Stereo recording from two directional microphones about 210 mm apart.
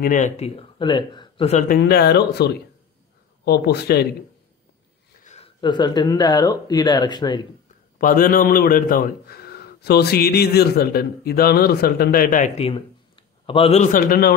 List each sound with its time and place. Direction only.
0.0 s speech: 35° left (ahead or behind)
1.8 s a man's voice: 50° left (ahead or behind)
5.2 s speech: 30° left (ahead or behind)
8.0 s a man's voice: 40° left (ahead or behind)